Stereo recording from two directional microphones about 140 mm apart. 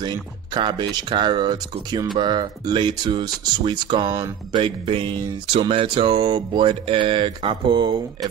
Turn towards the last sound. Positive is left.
turn(degrees=-35)  # may be behind; listen again after turning